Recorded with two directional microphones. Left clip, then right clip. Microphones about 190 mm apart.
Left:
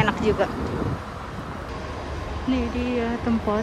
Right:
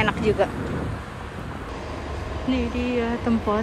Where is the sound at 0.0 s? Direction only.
10° left (ahead or behind).